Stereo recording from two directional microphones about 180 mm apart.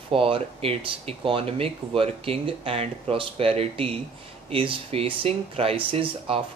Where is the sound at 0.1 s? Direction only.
30° right (ahead or behind).